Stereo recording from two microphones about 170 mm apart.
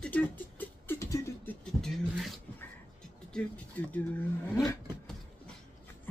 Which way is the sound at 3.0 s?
5° left (ahead or behind).